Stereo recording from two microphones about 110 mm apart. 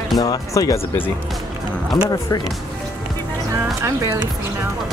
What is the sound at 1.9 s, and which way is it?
Speech, 35° left (ahead or behind).